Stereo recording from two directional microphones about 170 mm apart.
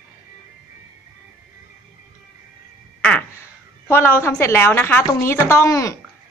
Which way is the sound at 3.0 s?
10° left (ahead or behind).